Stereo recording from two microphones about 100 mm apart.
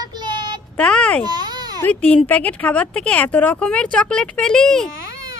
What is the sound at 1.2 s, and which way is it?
Baby cry, 45° right (ahead or behind).